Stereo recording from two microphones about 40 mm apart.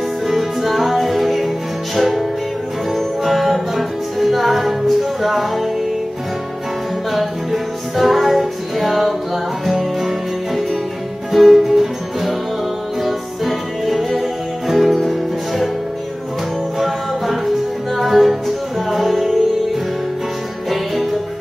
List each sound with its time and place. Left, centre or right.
0.3 s music: centre
7.1 s music: centre
16.8 s music: centre
20.7 s music: centre